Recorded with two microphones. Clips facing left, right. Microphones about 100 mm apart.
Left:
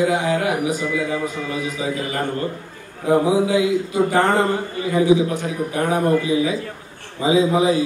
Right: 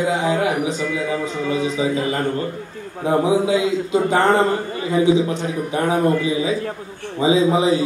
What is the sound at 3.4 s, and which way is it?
A man's voice, 20° right (ahead or behind).